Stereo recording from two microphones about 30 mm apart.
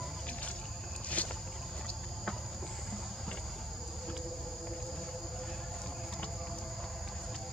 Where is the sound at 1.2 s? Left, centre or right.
Left.